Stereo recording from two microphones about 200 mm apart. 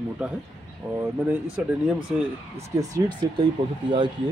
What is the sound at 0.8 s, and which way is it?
Speech, 10° right (ahead or behind).